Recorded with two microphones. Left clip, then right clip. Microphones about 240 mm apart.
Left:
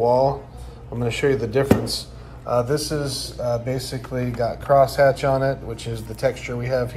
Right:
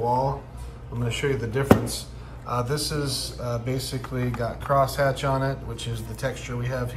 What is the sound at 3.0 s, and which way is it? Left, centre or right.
Speech, right.